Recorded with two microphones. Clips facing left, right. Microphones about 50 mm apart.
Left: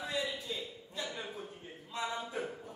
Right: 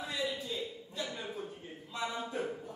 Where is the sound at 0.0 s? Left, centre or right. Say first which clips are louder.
Even; centre.